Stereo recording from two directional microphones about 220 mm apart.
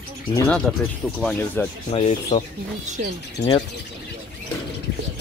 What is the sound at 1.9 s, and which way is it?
Speech, 25° left (ahead or behind).